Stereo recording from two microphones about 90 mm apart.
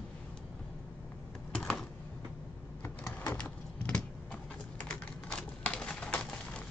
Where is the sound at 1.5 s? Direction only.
10° left (ahead or behind).